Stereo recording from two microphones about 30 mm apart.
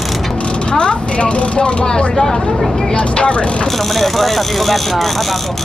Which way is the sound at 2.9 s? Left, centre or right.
Left.